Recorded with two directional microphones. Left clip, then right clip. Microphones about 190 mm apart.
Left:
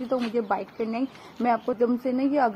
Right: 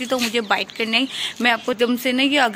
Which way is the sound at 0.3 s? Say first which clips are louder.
Right 6 dB; 15° right (ahead or behind).